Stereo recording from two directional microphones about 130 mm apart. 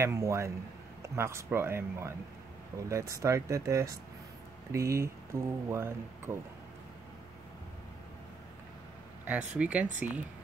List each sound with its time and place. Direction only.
0.0 s speech: 20° right (ahead or behind)
9.2 s speech: 10° right (ahead or behind)